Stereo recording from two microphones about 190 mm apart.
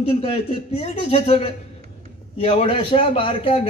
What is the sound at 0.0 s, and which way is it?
A man's voice, 30° left (ahead or behind).